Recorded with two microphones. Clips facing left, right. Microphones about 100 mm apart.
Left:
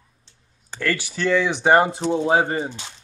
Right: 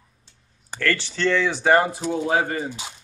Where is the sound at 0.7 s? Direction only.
10° left (ahead or behind); by 2.7 s 30° left (ahead or behind).